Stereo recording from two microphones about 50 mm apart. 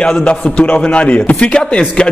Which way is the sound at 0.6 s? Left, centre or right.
Left.